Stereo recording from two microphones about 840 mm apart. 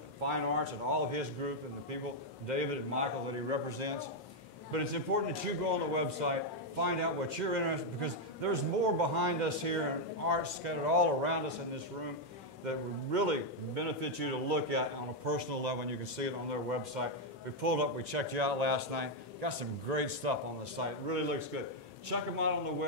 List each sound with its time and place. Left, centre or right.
0.2 s a man's voice: right